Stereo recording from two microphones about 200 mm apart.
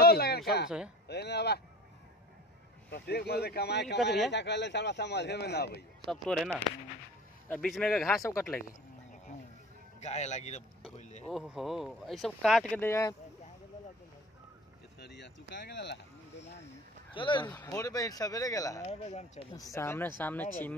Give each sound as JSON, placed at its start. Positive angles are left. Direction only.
{"t": 0.0, "sound": "a sound", "side_deg": 50}
{"t": 0.7, "sound": "speech", "side_deg": -5}
{"t": 1.0, "sound": "speech", "side_deg": 55}
{"t": 2.9, "sound": "speech", "side_deg": 55}
{"t": 6.2, "sound": "speech", "side_deg": 0}
{"t": 9.3, "sound": "music", "side_deg": 35}
{"t": 9.9, "sound": "speech", "side_deg": 35}
{"t": 11.2, "sound": "speech", "side_deg": 0}
{"t": 15.0, "sound": "a sound", "side_deg": 60}
{"t": 15.5, "sound": "speech", "side_deg": 60}
{"t": 17.1, "sound": "speech", "side_deg": 25}
{"t": 17.5, "sound": "speech", "side_deg": 10}
{"t": 18.9, "sound": "speech", "side_deg": 30}
{"t": 19.5, "sound": "speech", "side_deg": 15}